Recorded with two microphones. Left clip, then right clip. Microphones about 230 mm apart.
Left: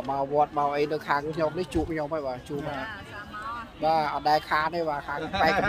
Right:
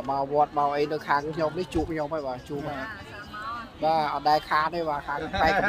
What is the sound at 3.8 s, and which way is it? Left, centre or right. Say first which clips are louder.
Speech: right 1 dB; centre.